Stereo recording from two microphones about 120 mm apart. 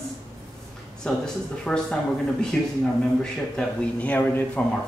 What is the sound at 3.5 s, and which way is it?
A man's voice, 10° left (ahead or behind).